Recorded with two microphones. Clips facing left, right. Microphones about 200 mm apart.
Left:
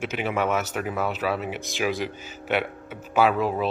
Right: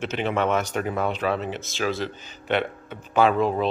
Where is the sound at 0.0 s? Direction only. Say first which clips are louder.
Right 1 dB; 10° left (ahead or behind).